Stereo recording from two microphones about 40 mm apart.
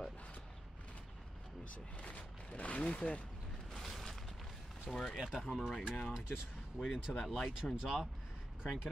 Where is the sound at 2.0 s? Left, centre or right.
Left.